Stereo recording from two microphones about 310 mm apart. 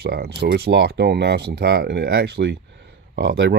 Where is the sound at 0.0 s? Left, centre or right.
Right.